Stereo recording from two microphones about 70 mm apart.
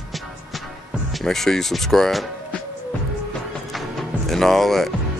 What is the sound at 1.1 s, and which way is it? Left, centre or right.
Speech, centre.